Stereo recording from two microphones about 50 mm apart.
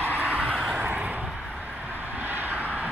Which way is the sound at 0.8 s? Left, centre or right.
Right.